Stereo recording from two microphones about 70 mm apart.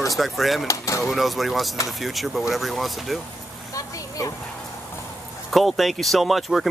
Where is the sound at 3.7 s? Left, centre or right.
Left.